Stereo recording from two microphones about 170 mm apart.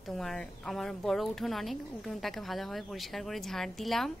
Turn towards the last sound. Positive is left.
turn(degrees=0)  # may be behind; listen again after turning